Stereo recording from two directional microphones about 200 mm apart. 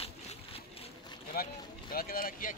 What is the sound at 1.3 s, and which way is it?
Speech, 50° left (ahead or behind).